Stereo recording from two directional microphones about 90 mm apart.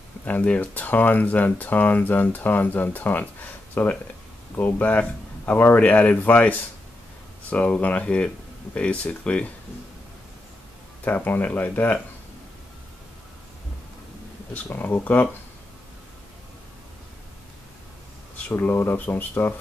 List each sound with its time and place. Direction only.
0.2 s speech: 15° left (ahead or behind)
11.1 s speech: 20° left (ahead or behind)
14.5 s speech: 20° left (ahead or behind)
18.5 s speech: 20° left (ahead or behind)